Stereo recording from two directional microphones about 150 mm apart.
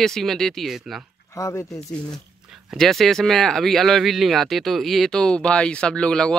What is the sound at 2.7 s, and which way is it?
Speech, centre (ahead or behind).